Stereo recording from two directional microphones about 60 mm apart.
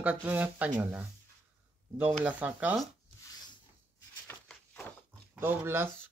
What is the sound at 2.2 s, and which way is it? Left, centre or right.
Speech, right.